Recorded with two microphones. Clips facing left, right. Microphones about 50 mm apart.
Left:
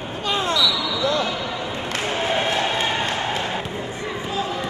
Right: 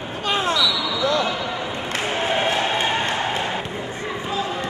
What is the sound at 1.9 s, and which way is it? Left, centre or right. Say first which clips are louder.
Basketball bounce: right 1 dB; centre.